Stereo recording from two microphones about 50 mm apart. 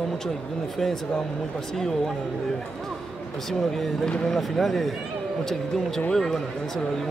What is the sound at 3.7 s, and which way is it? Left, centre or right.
Speech, centre.